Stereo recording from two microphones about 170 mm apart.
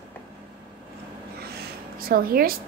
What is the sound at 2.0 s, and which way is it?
Speech, 60° right (ahead or behind).